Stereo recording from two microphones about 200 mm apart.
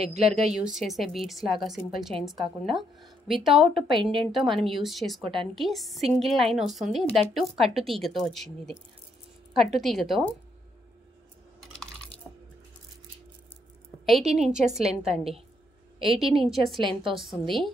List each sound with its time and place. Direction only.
0.2 s a woman's voice: centre (ahead or behind)
5.2 s a woman's voice: 25° right (ahead or behind)
5.5 s a woman's voice: centre (ahead or behind)
14.0 s a woman's voice: centre (ahead or behind)